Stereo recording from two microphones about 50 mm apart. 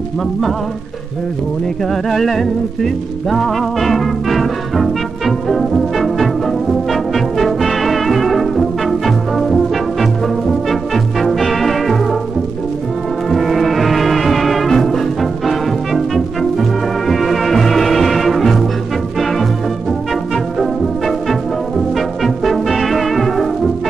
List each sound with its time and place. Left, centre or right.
2.0 s music: centre
13.3 s music: centre
20.5 s brass instrument: centre